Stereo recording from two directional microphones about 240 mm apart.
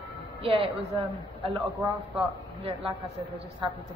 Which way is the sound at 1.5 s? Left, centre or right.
Centre.